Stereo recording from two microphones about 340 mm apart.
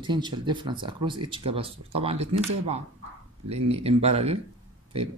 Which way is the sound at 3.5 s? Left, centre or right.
Centre.